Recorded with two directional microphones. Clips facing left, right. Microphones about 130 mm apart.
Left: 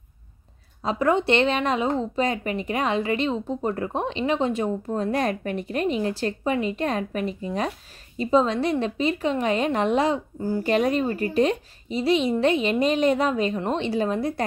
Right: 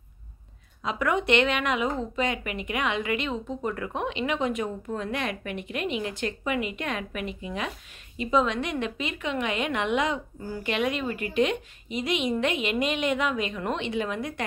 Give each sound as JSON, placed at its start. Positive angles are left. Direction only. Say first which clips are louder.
{"t": 0.8, "sound": "speech", "louder": "left 4 dB", "side_deg": 30}